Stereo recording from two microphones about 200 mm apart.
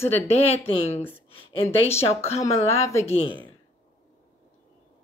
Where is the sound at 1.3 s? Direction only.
25° left (ahead or behind).